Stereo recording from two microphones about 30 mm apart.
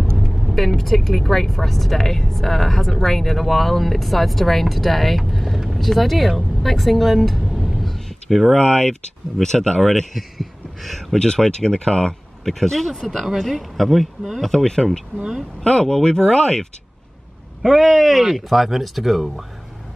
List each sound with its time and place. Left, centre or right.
0.3 s vehicle: centre
0.7 s speech: centre
7.5 s a sound: centre
8.5 s speech: left
9.8 s speech: centre
11.1 s speech: left
12.4 s speech: centre
14.5 s speech: centre
17.6 s speech: centre